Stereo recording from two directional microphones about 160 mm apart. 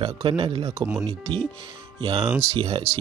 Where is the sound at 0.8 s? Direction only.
20° right (ahead or behind).